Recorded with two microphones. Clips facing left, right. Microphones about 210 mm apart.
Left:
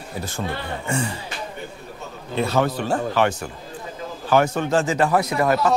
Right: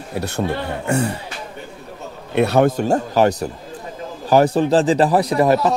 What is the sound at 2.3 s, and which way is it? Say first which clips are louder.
Speech: right 6 dB; 65° right (ahead or behind).